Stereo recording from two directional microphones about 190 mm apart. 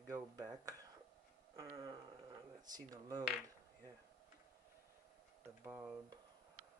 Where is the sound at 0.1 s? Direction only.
20° right (ahead or behind).